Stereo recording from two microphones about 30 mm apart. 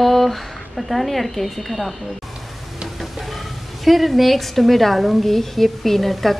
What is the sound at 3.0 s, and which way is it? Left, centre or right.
A woman's voice, centre.